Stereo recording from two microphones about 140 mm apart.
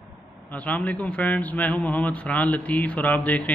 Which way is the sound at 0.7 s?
10° left (ahead or behind).